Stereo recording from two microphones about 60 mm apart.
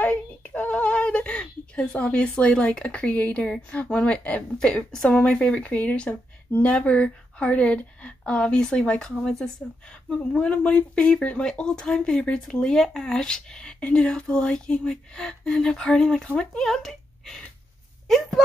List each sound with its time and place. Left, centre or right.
0.0 s a sound: left
3.7 s speech: left
9.2 s speech: centre